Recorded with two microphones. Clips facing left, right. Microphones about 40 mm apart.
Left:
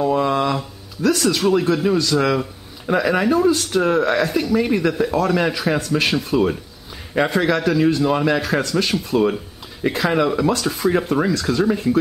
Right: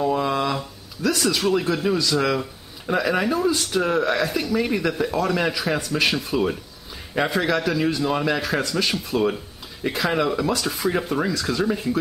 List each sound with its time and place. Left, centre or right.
0.0 s speech: centre